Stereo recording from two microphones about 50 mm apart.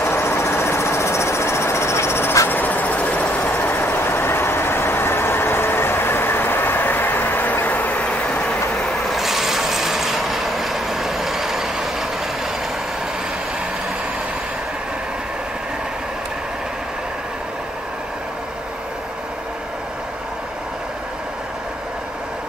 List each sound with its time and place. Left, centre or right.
0.0 s engine: left
2.6 s vehicle: left
8.0 s vehicle: left
8.4 s train: left
9.1 s vehicle: centre